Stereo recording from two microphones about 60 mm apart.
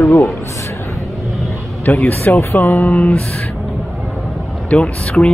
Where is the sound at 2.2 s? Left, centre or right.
Left.